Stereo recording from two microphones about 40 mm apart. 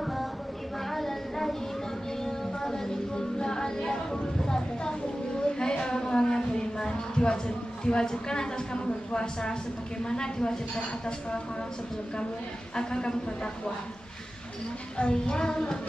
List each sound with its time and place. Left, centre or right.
0.0 s a sound: centre
0.9 s child singing: centre
2.2 s music: centre
5.4 s a sound: left
10.0 s music: centre
12.7 s music: centre
15.0 s music: left